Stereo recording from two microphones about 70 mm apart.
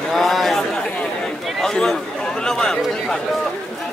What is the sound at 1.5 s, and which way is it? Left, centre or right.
Chatter, centre.